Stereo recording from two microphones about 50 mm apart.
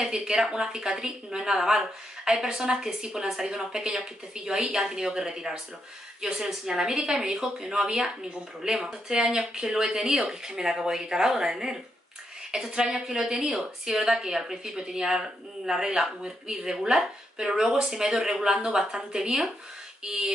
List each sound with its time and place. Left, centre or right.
0.0 s a woman's voice: centre